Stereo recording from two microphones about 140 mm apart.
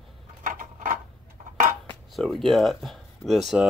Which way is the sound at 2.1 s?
Centre (ahead or behind).